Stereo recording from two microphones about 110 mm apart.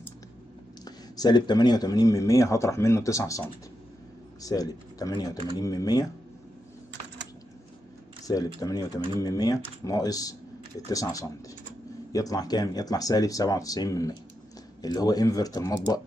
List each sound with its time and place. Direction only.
0.8 s speech: 35° left (ahead or behind)
8.3 s speech: 35° left (ahead or behind)